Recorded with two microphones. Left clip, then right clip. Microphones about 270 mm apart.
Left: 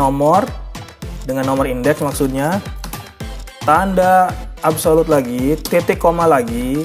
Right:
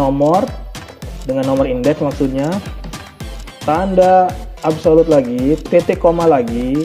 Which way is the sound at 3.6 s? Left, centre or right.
Left.